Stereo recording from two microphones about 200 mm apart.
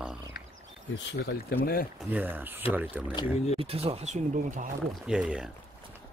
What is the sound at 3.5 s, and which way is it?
Speech, 30° right (ahead or behind).